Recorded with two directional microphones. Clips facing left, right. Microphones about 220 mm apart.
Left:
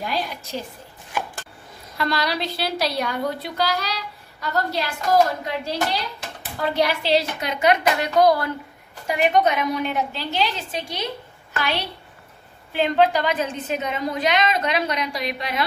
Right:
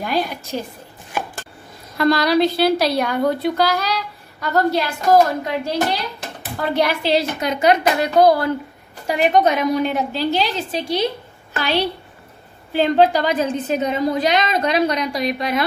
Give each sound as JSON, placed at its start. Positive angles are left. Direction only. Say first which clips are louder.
{"t": 0.0, "sound": "a woman's voice", "louder": "right 5 dB", "side_deg": -50}
{"t": 2.0, "sound": "a woman's voice", "louder": "right 9 dB", "side_deg": -45}